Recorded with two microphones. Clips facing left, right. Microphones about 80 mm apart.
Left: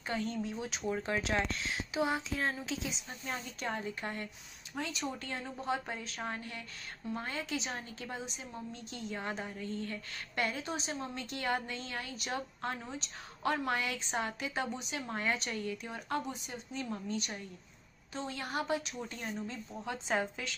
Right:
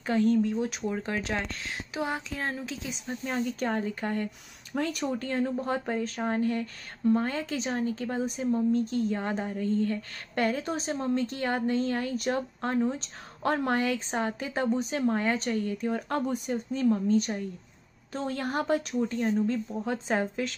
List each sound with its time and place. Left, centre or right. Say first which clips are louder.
0.0 s speech: right 12 dB; right
5.2 s a woman's voice: right 10 dB; right
19.8 s a woman's voice: right 2 dB; right